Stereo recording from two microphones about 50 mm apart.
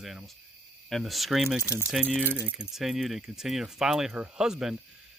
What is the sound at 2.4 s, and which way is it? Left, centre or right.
Speech, right.